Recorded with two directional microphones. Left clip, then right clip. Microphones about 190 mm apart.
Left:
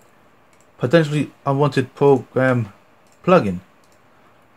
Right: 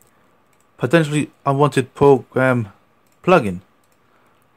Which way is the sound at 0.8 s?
40° right (ahead or behind).